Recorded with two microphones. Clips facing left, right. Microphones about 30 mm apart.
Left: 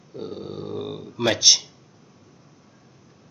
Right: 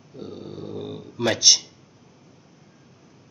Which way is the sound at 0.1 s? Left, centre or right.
Left.